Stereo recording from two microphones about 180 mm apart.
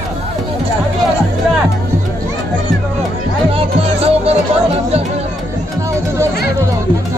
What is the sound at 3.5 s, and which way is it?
Music, 35° right (ahead or behind).